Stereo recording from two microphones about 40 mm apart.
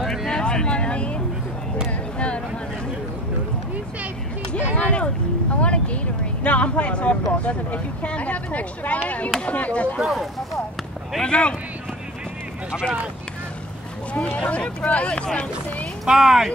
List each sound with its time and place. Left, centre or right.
0.0 s vehicle: centre
0.3 s vehicle: left
2.1 s a sound: left
4.5 s a sound: left
6.4 s speech: left
9.9 s speech: centre
11.2 s speech: left
14.1 s speech: left
16.1 s speech: centre